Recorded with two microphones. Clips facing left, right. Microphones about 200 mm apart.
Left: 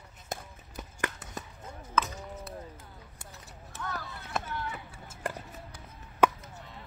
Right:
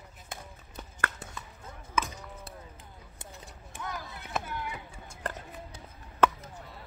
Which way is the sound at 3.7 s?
15° right (ahead or behind).